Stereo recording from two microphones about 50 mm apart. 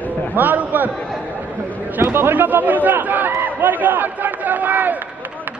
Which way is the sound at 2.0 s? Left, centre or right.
Right.